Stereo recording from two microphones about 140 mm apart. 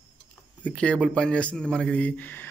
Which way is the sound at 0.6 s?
10° left (ahead or behind).